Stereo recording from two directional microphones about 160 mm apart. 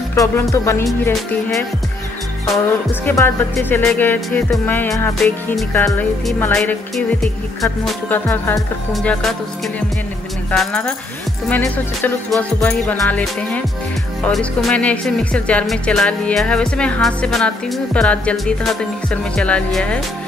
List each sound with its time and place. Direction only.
0.1 s music: 20° left (ahead or behind)
3.1 s music: 15° left (ahead or behind)
5.9 s music: centre (ahead or behind)
10.5 s music: 5° left (ahead or behind)